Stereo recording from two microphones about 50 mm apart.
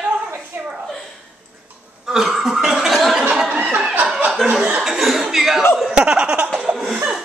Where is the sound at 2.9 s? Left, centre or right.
Centre.